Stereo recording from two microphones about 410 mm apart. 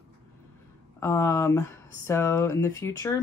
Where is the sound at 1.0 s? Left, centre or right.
Centre.